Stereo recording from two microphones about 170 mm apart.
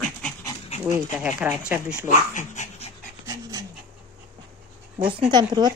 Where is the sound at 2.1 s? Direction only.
45° left (ahead or behind).